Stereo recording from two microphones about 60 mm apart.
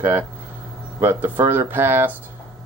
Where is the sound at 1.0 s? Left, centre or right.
Right.